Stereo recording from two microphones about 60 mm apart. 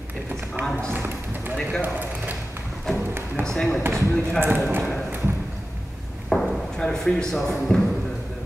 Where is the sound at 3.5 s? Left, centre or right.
Centre.